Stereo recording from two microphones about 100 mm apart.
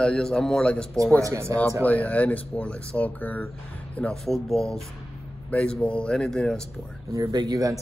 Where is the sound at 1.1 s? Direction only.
30° right (ahead or behind).